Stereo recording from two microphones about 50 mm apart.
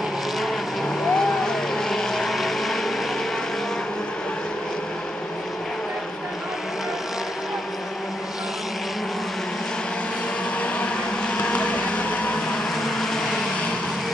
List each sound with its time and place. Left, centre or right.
1.1 s vehicle: centre
11.3 s a sound: centre
12.8 s vehicle: centre